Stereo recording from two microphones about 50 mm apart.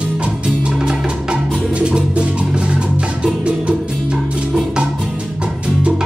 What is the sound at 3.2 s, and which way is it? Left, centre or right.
Music, centre.